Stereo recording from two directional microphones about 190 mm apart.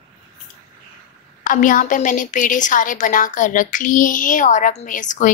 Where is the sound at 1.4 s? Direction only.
45° left (ahead or behind).